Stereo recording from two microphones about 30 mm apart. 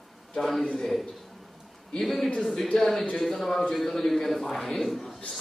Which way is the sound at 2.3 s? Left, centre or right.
Centre.